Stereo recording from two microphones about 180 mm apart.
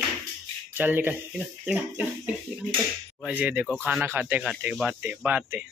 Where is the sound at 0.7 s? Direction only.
10° right (ahead or behind).